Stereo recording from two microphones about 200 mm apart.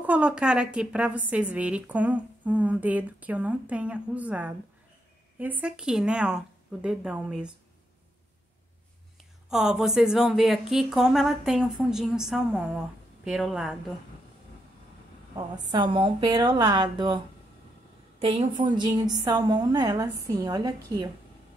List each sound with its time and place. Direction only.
0.0 s a woman's voice: 5° right (ahead or behind)
9.5 s a woman's voice: 5° right (ahead or behind)
15.3 s a woman's voice: 20° right (ahead or behind)
18.2 s a woman's voice: 25° right (ahead or behind)